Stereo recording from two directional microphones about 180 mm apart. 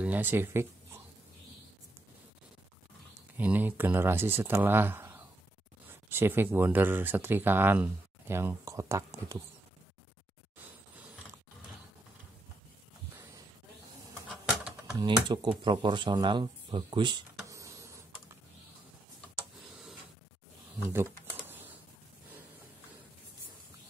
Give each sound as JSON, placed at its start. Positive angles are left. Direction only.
{"t": 0.0, "sound": "speech", "side_deg": -10}
{"t": 3.3, "sound": "speech", "side_deg": -10}
{"t": 14.9, "sound": "speech", "side_deg": -25}
{"t": 20.8, "sound": "typing", "side_deg": -15}